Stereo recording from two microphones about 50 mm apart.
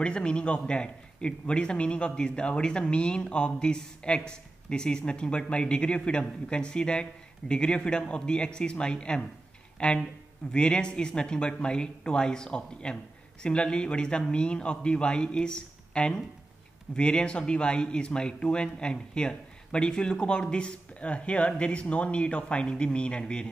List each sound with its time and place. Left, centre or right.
0.0 s speech: centre